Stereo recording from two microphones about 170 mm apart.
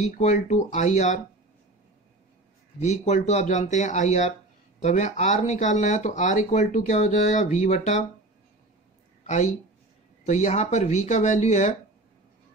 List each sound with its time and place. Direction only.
0.0 s speech: 45° left (ahead or behind)
2.8 s speech: 40° left (ahead or behind)
9.2 s speech: 45° left (ahead or behind)